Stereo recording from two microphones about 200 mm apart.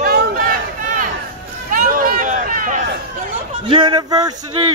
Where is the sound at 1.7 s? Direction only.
45° right (ahead or behind).